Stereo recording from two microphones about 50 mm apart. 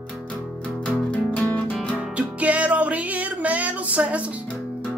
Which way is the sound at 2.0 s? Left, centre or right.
Right.